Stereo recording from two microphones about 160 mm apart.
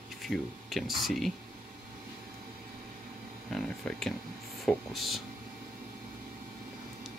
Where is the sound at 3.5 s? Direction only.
5° left (ahead or behind).